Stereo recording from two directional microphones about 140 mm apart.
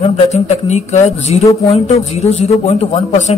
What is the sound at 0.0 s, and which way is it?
A man's voice, 55° left (ahead or behind).